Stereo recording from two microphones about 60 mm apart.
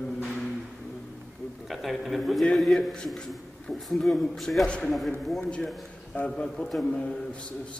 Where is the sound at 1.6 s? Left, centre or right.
Centre.